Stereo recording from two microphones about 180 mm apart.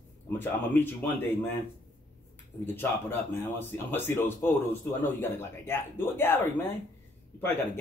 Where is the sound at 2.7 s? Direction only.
10° left (ahead or behind).